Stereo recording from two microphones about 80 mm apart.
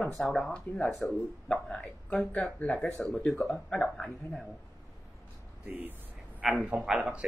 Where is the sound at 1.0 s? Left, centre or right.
Centre.